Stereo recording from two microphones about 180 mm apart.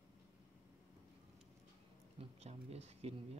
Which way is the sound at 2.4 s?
35° right (ahead or behind).